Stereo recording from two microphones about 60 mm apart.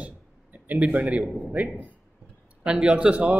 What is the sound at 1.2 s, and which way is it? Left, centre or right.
Speech, centre.